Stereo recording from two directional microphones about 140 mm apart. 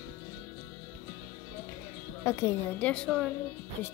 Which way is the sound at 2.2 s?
20° left (ahead or behind).